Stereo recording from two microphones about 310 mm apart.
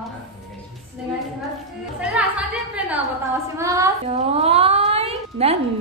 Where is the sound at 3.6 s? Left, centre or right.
Centre.